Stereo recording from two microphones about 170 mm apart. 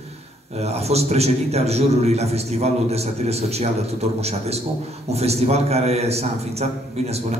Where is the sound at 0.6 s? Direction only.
40° right (ahead or behind).